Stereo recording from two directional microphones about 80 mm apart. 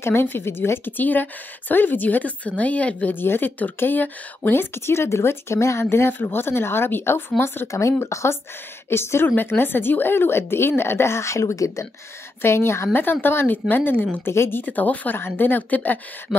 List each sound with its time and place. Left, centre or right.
0.0 s speech: left
7.6 s speech: left